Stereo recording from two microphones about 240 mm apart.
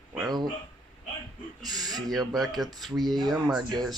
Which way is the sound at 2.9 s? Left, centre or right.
Centre.